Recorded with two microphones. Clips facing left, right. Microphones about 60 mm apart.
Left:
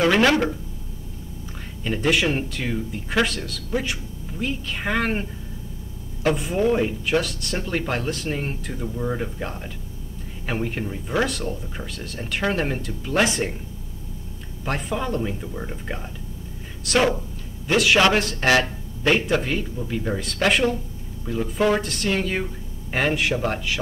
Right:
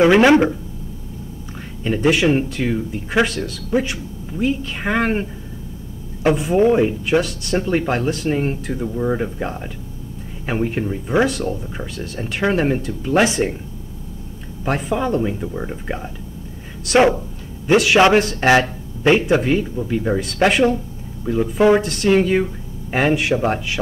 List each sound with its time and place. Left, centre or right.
0.0 s speech: centre
1.9 s speech: centre
7.6 s speech: centre
7.9 s speech: centre
14.8 s speech: centre
17.6 s speech: centre